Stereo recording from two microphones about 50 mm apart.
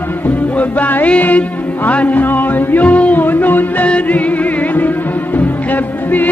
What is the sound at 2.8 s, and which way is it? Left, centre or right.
Music, left.